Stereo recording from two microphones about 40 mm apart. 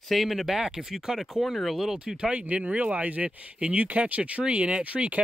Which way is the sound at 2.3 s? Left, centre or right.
Right.